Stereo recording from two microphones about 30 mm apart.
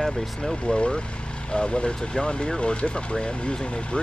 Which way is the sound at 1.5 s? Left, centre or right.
Left.